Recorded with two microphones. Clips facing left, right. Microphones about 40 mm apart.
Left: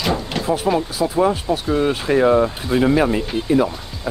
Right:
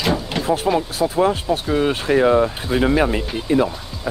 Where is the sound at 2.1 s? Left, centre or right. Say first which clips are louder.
Even; centre.